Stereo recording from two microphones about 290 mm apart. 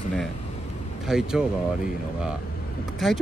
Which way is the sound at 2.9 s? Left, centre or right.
Centre.